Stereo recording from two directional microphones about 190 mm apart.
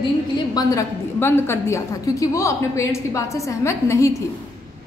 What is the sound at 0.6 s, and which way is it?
A woman's voice, 15° left (ahead or behind).